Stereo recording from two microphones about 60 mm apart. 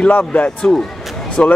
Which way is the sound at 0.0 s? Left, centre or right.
Left.